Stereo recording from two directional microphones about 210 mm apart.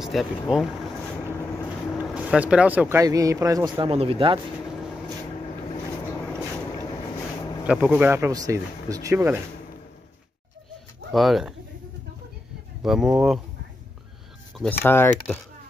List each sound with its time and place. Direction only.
0.0 s speech: centre (ahead or behind)
2.0 s speech: 5° right (ahead or behind); by 4.4 s 25° right (ahead or behind)
7.6 s speech: 5° right (ahead or behind)
11.1 s speech: centre (ahead or behind)
12.8 s speech: 5° right (ahead or behind)
14.6 s speech: 10° left (ahead or behind)